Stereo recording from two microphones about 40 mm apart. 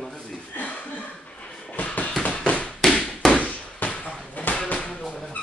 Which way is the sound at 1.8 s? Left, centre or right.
Left.